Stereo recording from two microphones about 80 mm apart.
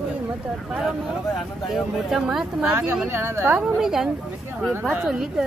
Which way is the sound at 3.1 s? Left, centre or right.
Right.